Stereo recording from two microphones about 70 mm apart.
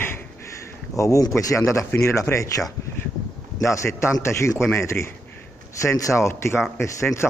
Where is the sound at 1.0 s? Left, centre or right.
Left.